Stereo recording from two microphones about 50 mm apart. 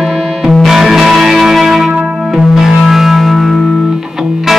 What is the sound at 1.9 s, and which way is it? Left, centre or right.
Music, right.